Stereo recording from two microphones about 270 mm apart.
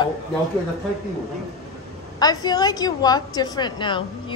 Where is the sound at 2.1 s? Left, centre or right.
Centre.